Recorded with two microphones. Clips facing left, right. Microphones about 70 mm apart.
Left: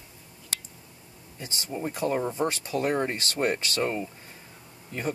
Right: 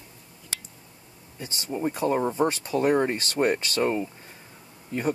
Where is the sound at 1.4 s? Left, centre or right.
Right.